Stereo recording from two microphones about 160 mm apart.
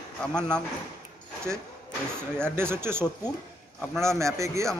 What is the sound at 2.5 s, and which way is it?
Speech, 15° right (ahead or behind).